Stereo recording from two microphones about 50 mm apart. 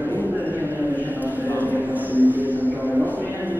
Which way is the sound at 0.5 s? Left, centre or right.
Right.